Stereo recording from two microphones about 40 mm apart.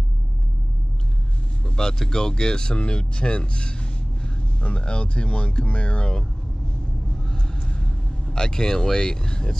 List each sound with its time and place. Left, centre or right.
1.8 s speech: centre
7.2 s vehicle: left